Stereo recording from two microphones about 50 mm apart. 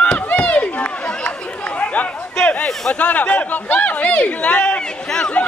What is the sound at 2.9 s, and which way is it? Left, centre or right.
Speech, left.